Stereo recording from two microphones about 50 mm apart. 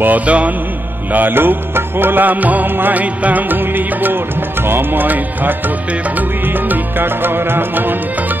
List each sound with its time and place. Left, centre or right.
0.0 s music: right
1.1 s music: right
6.7 s music: right